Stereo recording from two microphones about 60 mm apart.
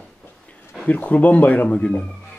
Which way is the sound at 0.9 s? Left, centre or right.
Left.